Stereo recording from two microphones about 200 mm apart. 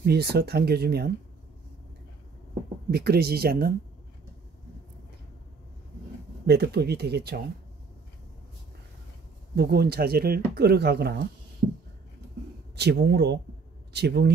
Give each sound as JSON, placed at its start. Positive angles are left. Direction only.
{"t": 0.0, "sound": "speech", "side_deg": -55}
{"t": 2.9, "sound": "speech", "side_deg": -50}
{"t": 6.4, "sound": "speech", "side_deg": -55}
{"t": 9.6, "sound": "speech", "side_deg": -55}
{"t": 12.7, "sound": "speech", "side_deg": -55}